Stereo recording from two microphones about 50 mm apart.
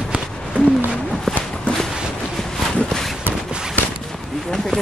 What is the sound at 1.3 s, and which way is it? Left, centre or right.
Walk, centre.